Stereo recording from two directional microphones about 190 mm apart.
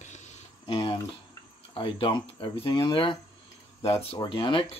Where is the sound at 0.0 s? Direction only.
35° left (ahead or behind).